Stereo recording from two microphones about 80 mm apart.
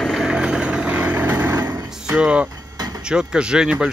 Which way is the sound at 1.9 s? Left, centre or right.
Centre.